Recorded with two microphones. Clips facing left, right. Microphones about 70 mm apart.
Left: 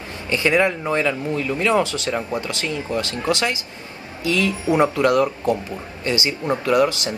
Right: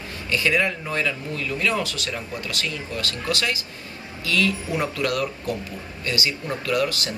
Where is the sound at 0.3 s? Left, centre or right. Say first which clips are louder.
Left 4 dB; left.